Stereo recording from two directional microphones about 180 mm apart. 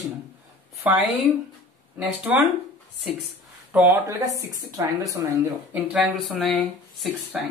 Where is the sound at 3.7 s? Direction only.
10° right (ahead or behind).